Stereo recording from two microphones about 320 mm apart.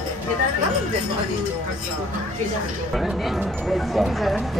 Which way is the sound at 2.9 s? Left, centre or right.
Centre.